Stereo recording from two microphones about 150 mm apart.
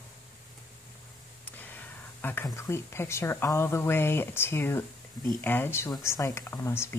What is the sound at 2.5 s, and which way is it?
Speech, 15° left (ahead or behind).